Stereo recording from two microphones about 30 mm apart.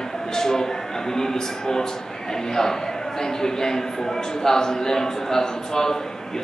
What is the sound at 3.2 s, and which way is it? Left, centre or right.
A man's voice, centre.